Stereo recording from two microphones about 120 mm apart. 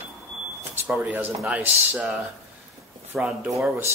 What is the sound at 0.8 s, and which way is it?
Speech, 15° right (ahead or behind).